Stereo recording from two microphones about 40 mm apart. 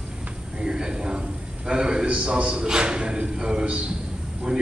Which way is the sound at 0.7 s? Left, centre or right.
Centre.